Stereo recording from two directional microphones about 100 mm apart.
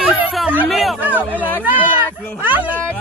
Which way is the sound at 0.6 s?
Centre (ahead or behind).